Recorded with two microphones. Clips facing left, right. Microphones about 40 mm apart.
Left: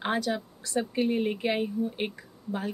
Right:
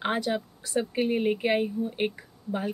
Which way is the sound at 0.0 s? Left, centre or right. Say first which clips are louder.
Right 1 dB; centre.